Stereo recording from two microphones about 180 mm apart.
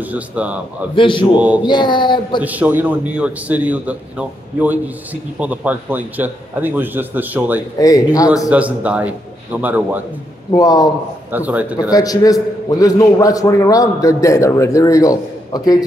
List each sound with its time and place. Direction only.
0.0 s a man's voice: 10° right (ahead or behind)
0.9 s a man's voice: 25° left (ahead or behind)
2.4 s a man's voice: 10° right (ahead or behind)
7.8 s a man's voice: 20° left (ahead or behind)
8.5 s a man's voice: 5° right (ahead or behind)
10.6 s a man's voice: 20° left (ahead or behind)
11.3 s a man's voice: 10° right (ahead or behind)
11.9 s a man's voice: 20° left (ahead or behind)